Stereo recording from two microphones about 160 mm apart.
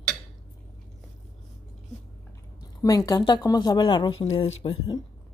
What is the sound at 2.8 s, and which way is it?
Speech, 20° left (ahead or behind).